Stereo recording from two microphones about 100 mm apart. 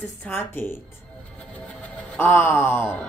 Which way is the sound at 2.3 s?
20° left (ahead or behind).